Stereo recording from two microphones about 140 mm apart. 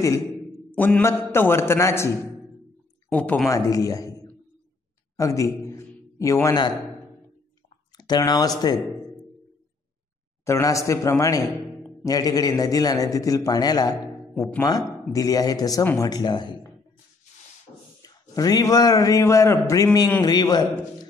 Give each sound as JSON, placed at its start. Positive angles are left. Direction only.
{"t": 0.7, "sound": "a man's voice", "side_deg": 15}
{"t": 3.1, "sound": "speech", "side_deg": 10}
{"t": 3.4, "sound": "a man's voice", "side_deg": 25}
{"t": 5.1, "sound": "a sound", "side_deg": 20}
{"t": 8.0, "sound": "a man's voice", "side_deg": 30}
{"t": 10.4, "sound": "a man's voice", "side_deg": 20}
{"t": 14.3, "sound": "speech", "side_deg": 10}
{"t": 14.6, "sound": "a man's voice", "side_deg": 25}
{"t": 18.0, "sound": "a man's voice", "side_deg": 25}